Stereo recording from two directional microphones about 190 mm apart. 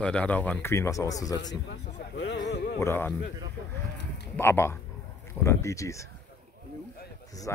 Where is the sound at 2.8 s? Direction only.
15° left (ahead or behind).